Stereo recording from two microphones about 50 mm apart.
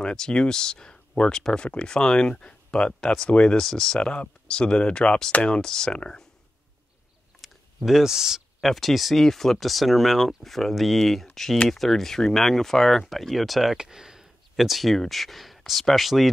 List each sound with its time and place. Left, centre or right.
0.0 s speech: centre
4.0 s speech: centre
7.4 s a sound: centre
8.6 s speech: centre